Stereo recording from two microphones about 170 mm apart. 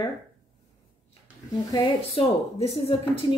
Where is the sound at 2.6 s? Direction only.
35° left (ahead or behind).